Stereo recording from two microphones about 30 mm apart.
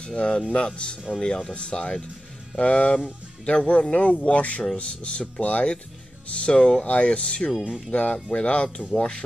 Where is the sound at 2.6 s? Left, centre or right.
Left.